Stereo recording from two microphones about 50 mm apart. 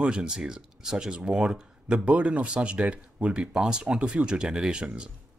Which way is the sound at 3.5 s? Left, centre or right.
Centre.